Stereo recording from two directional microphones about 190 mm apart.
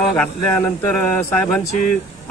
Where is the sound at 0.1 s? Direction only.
10° left (ahead or behind).